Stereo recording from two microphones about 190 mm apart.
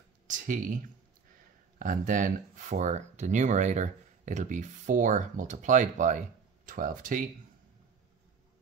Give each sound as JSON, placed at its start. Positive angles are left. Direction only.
{"t": 0.3, "sound": "computer keyboard", "side_deg": -45}
{"t": 1.8, "sound": "speech", "side_deg": -45}